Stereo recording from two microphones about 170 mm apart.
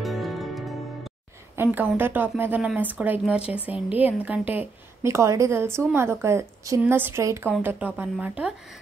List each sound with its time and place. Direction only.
0.0 s music: centre (ahead or behind)
1.6 s speech: 10° right (ahead or behind)